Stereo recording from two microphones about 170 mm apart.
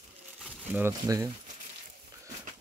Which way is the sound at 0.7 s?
15° right (ahead or behind).